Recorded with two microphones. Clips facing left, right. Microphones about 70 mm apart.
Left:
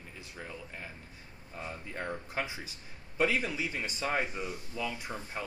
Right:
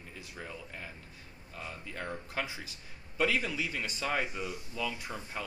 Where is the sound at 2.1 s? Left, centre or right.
Centre.